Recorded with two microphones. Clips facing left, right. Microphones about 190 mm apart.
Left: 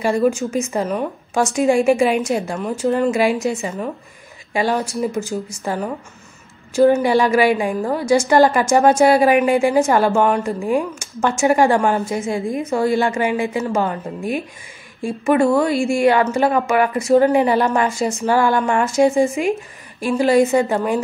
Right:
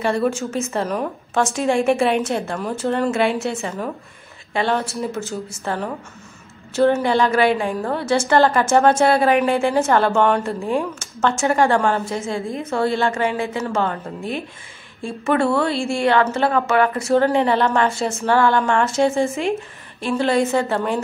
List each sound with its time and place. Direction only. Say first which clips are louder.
0.0 s a woman's voice: left 3 dB; 10° left (ahead or behind)
6.8 s a woman's voice: left 3 dB; 10° left (ahead or behind)
11.0 s a woman's voice: left 2 dB; 15° left (ahead or behind)
15.2 s a woman's voice: left 3 dB; 15° left (ahead or behind)